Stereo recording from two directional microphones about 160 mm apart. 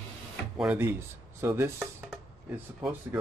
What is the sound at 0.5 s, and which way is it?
Speech, 10° right (ahead or behind).